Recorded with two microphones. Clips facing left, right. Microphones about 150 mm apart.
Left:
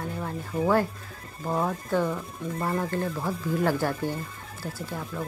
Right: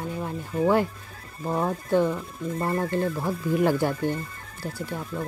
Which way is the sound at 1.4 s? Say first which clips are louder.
Right 1 dB; 5° right (ahead or behind).